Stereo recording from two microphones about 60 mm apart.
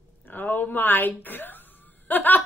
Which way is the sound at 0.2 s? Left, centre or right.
Left.